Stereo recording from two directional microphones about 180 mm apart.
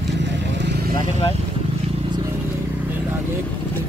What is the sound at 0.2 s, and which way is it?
Vehicle, 75° right (ahead or behind).